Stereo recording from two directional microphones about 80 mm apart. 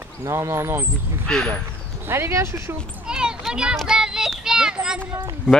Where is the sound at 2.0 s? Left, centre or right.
Right.